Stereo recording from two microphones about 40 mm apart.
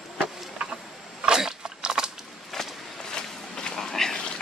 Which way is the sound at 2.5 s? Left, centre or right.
Centre.